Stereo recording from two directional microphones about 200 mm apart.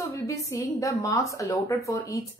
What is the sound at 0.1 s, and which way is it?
Speech, 15° left (ahead or behind).